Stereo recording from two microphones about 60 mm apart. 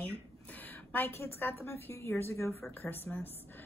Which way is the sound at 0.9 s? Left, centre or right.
Left.